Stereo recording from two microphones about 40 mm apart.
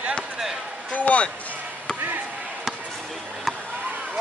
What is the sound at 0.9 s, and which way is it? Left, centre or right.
Speech, left.